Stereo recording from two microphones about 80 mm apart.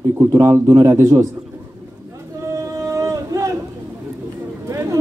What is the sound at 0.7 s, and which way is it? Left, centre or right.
Speech, right.